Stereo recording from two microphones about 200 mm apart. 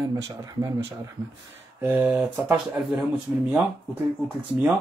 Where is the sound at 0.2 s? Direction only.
15° right (ahead or behind).